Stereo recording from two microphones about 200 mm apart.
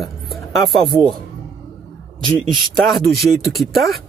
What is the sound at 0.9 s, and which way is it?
Speech, 15° right (ahead or behind).